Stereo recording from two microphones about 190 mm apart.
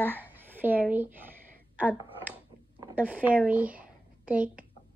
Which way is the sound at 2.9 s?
10° right (ahead or behind).